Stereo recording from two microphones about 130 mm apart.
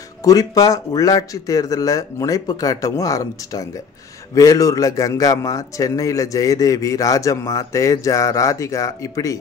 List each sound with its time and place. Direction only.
0.2 s a man's voice: 30° left (ahead or behind)